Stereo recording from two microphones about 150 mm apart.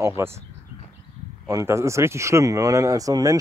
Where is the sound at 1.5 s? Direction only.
20° right (ahead or behind).